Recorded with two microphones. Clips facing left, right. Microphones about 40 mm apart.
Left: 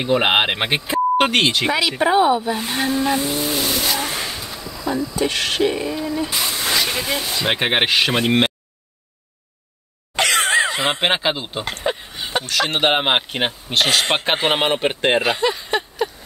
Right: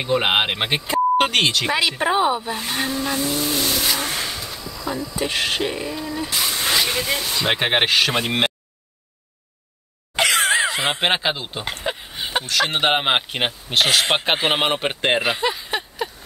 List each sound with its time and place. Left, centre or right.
0.0 s speech: centre
0.9 s beep: centre
2.0 s speech: centre
5.2 s speech: centre
10.1 s a sound: centre
12.2 s a sound: centre
12.4 s speech: centre